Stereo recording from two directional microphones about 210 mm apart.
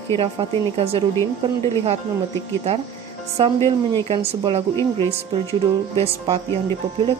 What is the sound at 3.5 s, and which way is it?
Speech, 15° left (ahead or behind).